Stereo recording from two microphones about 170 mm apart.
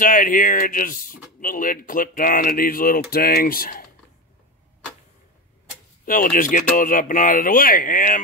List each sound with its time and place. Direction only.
0.0 s speech: 55° left (ahead or behind)
6.0 s speech: 55° left (ahead or behind)